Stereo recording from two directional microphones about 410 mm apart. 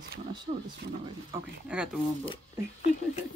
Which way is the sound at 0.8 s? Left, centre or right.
Right.